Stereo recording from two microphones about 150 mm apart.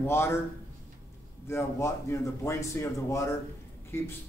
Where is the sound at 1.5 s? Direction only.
20° left (ahead or behind).